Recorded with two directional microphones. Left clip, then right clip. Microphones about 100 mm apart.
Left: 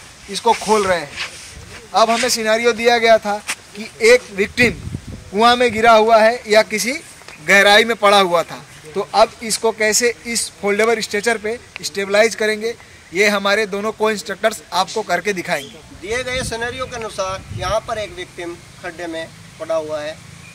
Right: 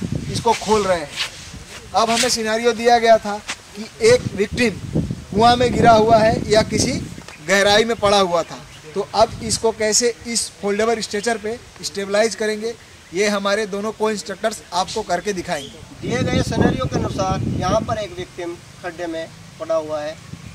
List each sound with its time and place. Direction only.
0.7 s a man's voice: 20° left (ahead or behind)
2.2 s a man's voice: 20° left (ahead or behind)